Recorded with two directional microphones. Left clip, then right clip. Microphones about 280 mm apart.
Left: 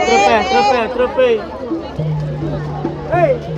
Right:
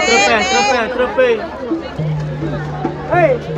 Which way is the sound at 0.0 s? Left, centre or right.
Left.